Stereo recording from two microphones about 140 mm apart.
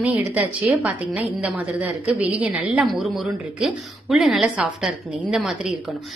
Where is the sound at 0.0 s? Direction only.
10° right (ahead or behind).